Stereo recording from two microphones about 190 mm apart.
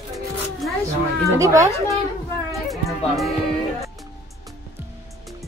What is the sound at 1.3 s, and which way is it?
Speech, 15° right (ahead or behind).